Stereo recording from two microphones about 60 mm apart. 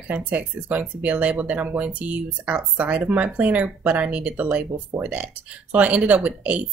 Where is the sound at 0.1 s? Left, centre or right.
Right.